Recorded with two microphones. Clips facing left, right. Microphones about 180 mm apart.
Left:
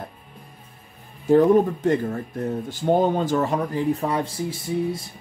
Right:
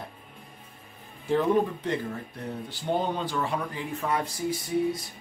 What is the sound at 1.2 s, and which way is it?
Speech, 45° left (ahead or behind).